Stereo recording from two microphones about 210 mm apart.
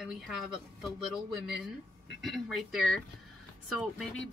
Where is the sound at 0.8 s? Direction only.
Centre (ahead or behind).